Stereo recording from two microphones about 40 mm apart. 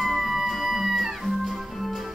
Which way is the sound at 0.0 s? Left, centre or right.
Centre.